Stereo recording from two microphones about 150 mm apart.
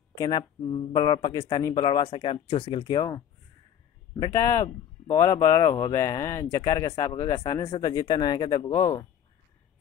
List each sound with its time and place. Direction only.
0.1 s speech: 30° left (ahead or behind)